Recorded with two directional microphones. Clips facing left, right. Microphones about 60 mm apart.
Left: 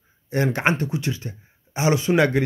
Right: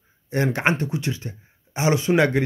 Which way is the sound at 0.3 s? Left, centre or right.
Centre.